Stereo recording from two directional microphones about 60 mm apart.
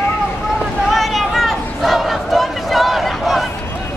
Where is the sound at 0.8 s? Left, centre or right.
Centre.